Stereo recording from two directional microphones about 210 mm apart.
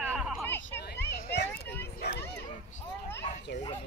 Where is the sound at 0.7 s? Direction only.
55° left (ahead or behind).